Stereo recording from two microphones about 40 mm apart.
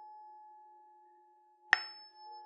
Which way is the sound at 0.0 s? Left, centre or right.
Centre.